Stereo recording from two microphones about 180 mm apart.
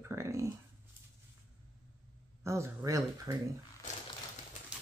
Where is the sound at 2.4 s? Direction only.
15° right (ahead or behind).